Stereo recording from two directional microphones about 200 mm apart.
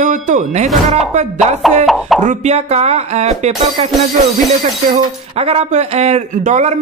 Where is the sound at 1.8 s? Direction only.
Centre (ahead or behind).